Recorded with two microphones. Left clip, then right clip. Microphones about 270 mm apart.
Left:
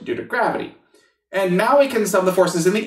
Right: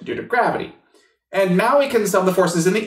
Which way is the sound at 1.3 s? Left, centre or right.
Left.